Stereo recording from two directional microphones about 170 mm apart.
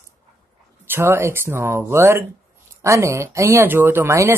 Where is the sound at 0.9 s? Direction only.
15° right (ahead or behind).